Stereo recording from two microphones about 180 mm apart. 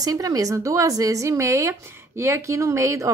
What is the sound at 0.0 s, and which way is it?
Speech, 20° right (ahead or behind).